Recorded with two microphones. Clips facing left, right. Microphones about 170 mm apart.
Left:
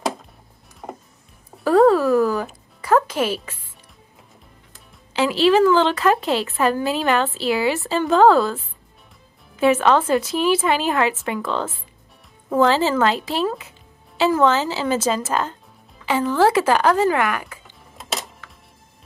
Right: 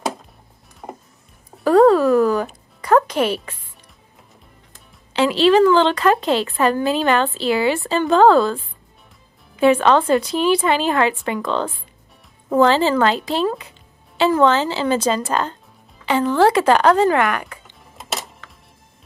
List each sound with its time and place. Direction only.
0.8 s music: centre (ahead or behind)
3.2 s speech: 60° right (ahead or behind)
5.1 s a woman's voice: 5° left (ahead or behind)
9.6 s a woman's voice: 5° left (ahead or behind)
17.2 s speech: 55° right (ahead or behind)